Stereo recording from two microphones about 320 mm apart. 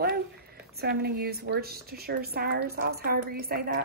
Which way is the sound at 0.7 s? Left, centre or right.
Right.